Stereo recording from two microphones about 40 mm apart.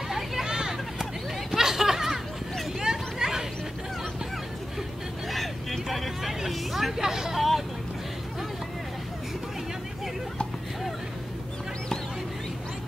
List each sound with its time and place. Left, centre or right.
0.1 s a sound: centre
2.8 s hubbub: centre
5.3 s hubbub: centre